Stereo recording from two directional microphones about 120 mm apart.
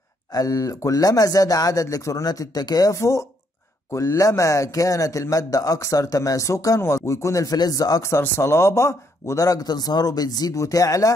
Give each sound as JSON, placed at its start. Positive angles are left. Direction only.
{"t": 0.3, "sound": "a man's voice", "side_deg": 30}